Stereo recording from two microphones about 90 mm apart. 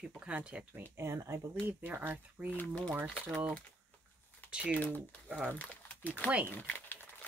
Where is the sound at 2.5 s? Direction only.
15° left (ahead or behind).